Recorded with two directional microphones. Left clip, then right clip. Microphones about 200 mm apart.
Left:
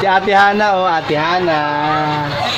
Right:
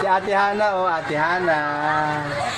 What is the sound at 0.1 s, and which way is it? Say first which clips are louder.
Speech: left 10 dB; 25° left (ahead or behind).